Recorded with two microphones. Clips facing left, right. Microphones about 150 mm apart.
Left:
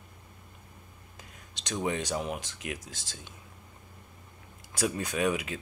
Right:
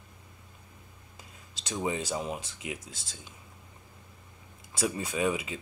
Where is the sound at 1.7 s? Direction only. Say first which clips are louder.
Left 1 dB; 5° right (ahead or behind).